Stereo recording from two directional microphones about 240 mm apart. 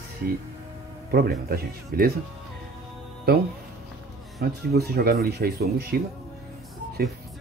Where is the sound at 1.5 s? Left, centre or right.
Right.